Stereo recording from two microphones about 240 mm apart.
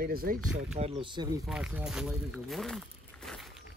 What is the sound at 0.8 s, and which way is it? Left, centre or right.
Speech, right.